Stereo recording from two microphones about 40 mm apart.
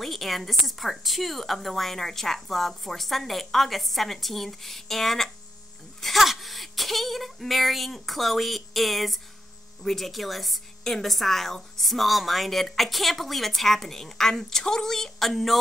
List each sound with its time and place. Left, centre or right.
0.0 s a woman's voice: centre
10.8 s a woman's voice: centre